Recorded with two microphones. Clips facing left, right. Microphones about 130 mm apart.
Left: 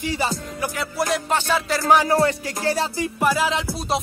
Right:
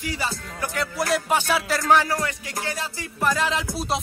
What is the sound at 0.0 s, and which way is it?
Music, 25° left (ahead or behind).